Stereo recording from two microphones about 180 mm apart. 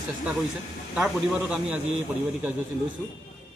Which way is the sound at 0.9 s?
5° right (ahead or behind).